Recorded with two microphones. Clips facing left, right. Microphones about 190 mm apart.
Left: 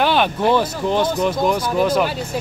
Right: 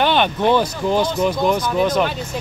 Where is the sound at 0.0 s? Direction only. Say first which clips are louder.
Even; 5° left (ahead or behind).